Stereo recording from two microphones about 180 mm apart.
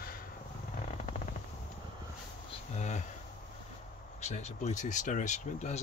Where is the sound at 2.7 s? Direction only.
40° left (ahead or behind).